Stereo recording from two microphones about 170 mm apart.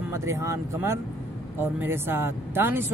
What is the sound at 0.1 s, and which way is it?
Speech, 15° right (ahead or behind).